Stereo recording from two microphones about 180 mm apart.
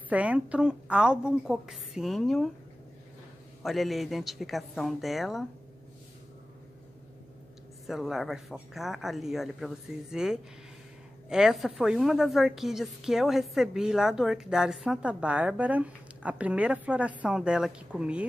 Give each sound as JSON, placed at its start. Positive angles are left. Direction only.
{"t": 0.1, "sound": "a woman's voice", "side_deg": -5}
{"t": 3.6, "sound": "a woman's voice", "side_deg": 0}
{"t": 7.8, "sound": "a woman's voice", "side_deg": 0}